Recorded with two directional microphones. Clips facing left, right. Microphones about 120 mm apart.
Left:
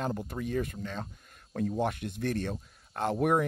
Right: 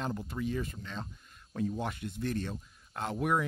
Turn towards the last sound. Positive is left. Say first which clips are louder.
# left 4 dB
turn(degrees=50)  # may be behind; listen again after turning